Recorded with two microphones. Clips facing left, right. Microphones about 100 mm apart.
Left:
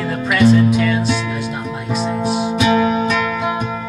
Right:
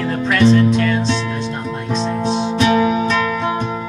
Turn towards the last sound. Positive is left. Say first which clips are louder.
# even
turn(degrees=30)  # may be behind; listen again after turning